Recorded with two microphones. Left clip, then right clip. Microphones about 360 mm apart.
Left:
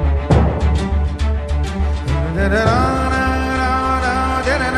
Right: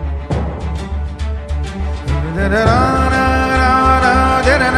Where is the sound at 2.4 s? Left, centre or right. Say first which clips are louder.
Right 3 dB; right.